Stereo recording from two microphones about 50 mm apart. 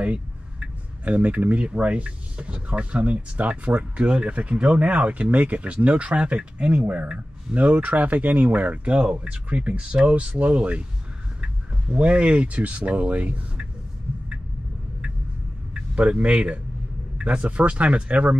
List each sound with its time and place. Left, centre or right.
0.0 s speech: right
15.9 s speech: right